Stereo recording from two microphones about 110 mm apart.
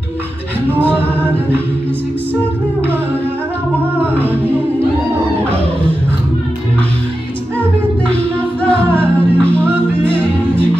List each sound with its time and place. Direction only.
8.1 s music: 10° left (ahead or behind)